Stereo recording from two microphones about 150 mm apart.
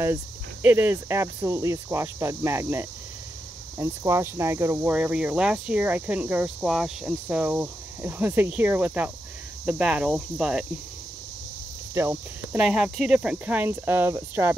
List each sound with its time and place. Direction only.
0.0 s speech: 15° right (ahead or behind)
9.7 s cricket: 5° right (ahead or behind)
11.9 s speech: 15° right (ahead or behind)
12.5 s speech: 5° right (ahead or behind)